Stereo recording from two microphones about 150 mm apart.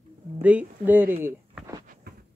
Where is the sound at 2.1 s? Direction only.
90° right.